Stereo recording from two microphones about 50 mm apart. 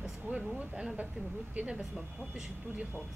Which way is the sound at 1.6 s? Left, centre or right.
Right.